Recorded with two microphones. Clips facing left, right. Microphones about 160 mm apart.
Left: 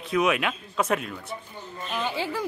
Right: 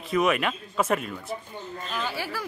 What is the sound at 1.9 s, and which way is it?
Speech, 20° left (ahead or behind).